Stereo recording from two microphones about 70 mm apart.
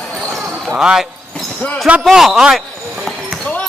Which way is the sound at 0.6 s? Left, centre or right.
Centre.